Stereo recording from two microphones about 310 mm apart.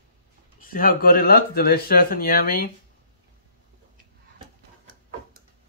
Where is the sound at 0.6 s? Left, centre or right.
Left.